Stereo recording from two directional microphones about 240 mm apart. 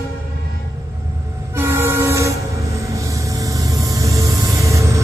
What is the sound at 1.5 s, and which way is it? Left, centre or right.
Train, centre.